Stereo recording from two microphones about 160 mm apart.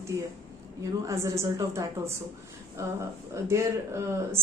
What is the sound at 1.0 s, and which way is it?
Speech, 20° right (ahead or behind).